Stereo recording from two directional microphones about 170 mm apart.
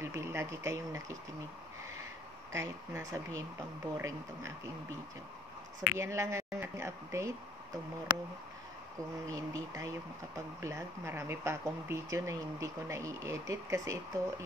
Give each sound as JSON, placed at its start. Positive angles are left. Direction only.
{"t": 0.0, "sound": "speech", "side_deg": -15}
{"t": 2.5, "sound": "speech", "side_deg": -15}
{"t": 5.9, "sound": "speech", "side_deg": -15}
{"t": 9.3, "sound": "speech", "side_deg": -20}